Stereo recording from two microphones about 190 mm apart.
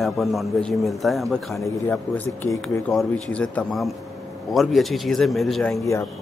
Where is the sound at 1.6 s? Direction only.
10° left (ahead or behind).